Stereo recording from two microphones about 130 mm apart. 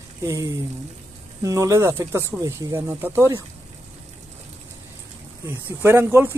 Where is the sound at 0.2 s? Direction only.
25° right (ahead or behind).